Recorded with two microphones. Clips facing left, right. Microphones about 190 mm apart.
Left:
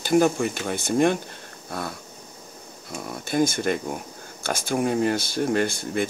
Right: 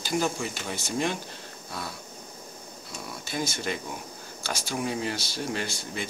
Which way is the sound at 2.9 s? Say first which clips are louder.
Left 8 dB; 55° left (ahead or behind).